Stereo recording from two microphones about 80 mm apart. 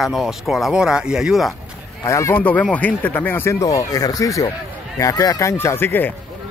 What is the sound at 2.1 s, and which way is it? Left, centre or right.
Speech, left.